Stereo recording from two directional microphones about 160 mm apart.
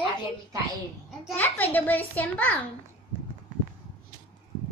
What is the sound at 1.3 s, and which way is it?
A child's voice, 10° left (ahead or behind).